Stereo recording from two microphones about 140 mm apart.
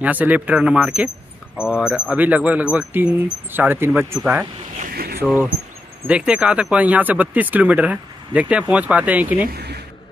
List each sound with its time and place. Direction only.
0.0 s speech: 10° right (ahead or behind)
4.9 s a sound: 90° right
6.0 s speech: 10° right (ahead or behind)